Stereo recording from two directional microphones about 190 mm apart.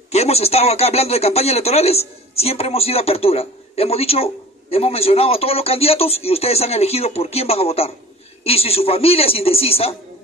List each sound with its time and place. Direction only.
0.1 s speech: 35° left (ahead or behind)